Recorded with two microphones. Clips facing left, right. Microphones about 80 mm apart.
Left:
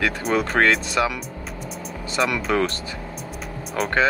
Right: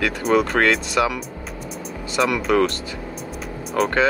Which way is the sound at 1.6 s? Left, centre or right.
Centre.